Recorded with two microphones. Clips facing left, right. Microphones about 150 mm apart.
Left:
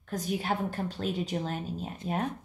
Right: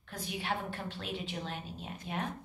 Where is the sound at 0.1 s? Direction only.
40° left (ahead or behind).